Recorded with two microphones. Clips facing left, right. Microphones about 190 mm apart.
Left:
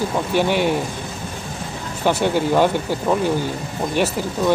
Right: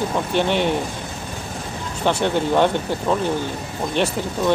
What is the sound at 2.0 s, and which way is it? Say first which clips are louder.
Speech: left 1 dB; 5° left (ahead or behind).